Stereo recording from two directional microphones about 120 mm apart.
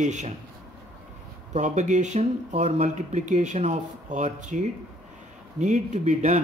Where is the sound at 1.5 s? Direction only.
85° right.